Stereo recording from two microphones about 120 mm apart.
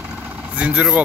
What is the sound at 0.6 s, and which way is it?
Vehicle, 10° right (ahead or behind).